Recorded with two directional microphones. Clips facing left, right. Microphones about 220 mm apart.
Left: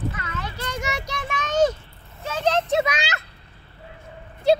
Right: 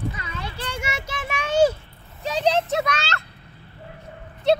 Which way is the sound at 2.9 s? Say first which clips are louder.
Even; 15° left (ahead or behind).